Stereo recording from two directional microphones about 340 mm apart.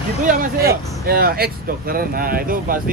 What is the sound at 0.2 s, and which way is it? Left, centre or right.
Speech, right.